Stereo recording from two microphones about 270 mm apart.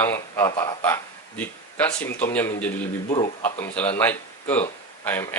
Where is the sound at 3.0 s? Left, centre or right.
Left.